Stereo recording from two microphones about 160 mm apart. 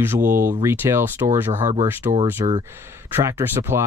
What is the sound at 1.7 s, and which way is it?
Speech, 35° right (ahead or behind).